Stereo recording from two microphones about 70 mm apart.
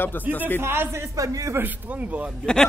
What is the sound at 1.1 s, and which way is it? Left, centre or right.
Speech, right.